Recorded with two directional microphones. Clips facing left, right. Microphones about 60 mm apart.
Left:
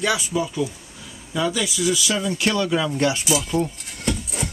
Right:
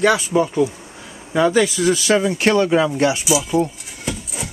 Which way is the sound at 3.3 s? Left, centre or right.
Centre.